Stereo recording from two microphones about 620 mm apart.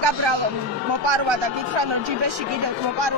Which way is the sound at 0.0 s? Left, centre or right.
Right.